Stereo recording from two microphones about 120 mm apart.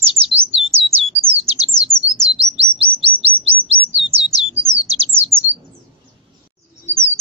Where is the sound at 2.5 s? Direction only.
55° right (ahead or behind).